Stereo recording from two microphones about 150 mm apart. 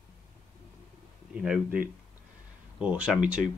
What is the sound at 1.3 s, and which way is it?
Speech, 5° right (ahead or behind).